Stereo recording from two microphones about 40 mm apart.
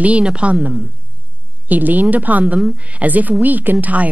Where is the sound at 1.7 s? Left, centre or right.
Right.